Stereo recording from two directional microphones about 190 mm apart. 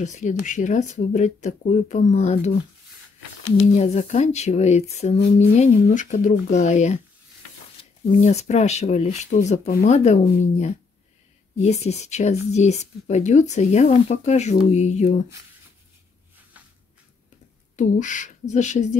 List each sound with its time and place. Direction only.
0.0 s speech: 40° left (ahead or behind)
3.7 s speech: 35° left (ahead or behind)
8.2 s speech: 35° left (ahead or behind)
17.7 s speech: 40° left (ahead or behind)